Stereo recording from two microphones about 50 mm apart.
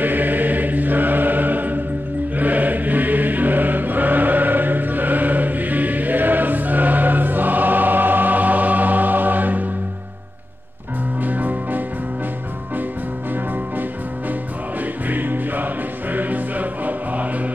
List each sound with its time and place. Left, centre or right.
0.0 s chant: right
2.3 s choir: right
11.2 s music: right
15.0 s music: right